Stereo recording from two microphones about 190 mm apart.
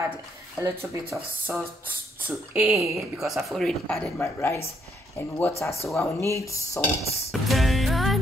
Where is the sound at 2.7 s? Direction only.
15° right (ahead or behind).